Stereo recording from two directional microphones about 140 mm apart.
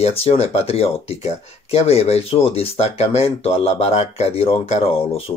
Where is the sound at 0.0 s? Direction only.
45° left (ahead or behind).